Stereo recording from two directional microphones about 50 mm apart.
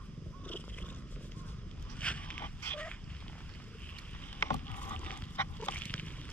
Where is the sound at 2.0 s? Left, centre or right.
Left.